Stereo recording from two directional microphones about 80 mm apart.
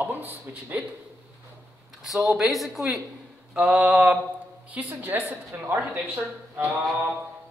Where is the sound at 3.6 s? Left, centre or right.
Centre.